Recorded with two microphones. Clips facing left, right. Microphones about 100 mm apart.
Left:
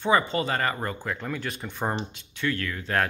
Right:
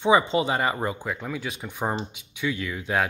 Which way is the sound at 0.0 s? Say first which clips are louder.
Right 3 dB; 20° right (ahead or behind).